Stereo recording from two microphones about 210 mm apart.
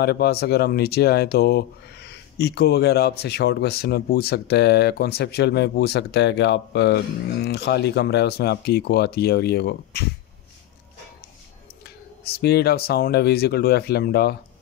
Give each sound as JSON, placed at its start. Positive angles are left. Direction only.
{"t": 0.0, "sound": "speech", "side_deg": 50}
{"t": 12.2, "sound": "speech", "side_deg": 50}